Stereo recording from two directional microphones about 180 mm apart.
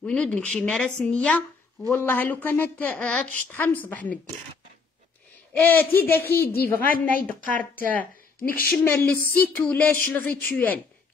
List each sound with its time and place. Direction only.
0.0 s a woman's voice: 5° left (ahead or behind)
5.5 s a woman's voice: 10° left (ahead or behind)
6.5 s a woman's voice: 60° left (ahead or behind)
7.9 s a sound: 10° left (ahead or behind)
8.5 s a woman's voice: 55° left (ahead or behind)
8.7 s a woman's voice: 10° left (ahead or behind)